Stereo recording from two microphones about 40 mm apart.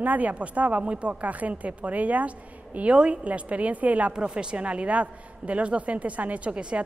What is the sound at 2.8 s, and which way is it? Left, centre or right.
A woman's voice, right.